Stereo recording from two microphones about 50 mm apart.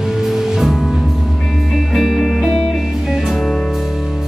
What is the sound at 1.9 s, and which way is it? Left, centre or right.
Music, centre.